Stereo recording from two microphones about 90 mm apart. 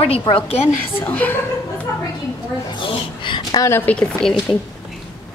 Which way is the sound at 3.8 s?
10° left (ahead or behind).